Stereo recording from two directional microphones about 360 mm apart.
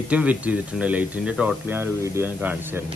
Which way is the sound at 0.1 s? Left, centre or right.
Centre.